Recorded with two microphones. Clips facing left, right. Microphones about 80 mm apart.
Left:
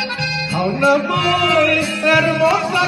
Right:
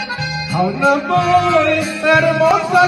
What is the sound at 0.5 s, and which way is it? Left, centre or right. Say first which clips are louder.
Music: right 1 dB; right.